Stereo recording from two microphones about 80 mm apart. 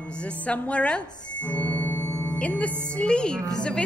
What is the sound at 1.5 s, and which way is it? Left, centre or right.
Music, left.